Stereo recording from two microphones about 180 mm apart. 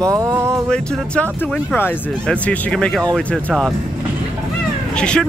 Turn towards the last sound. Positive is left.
turn(degrees=5)  # may be behind; listen again after turning